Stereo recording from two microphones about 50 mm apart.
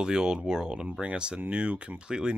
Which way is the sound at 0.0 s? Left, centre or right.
Centre.